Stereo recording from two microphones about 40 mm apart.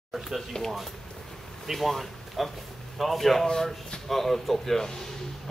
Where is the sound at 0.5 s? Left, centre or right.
Left.